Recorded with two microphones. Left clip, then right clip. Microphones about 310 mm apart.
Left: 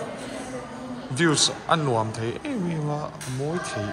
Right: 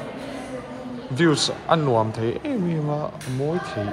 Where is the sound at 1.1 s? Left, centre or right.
Centre.